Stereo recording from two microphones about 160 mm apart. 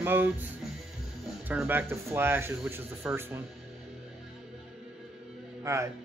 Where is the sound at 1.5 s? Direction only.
10° right (ahead or behind).